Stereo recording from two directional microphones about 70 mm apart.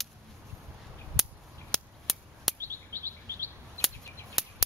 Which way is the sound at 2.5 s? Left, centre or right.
Left.